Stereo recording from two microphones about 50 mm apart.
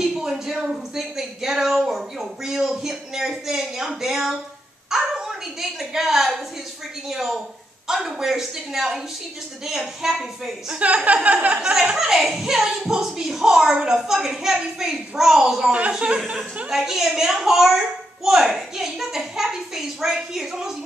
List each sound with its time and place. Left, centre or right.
0.0 s a woman's voice: centre
10.7 s speech: right
12.0 s speech: centre
15.9 s speech: centre
16.7 s speech: centre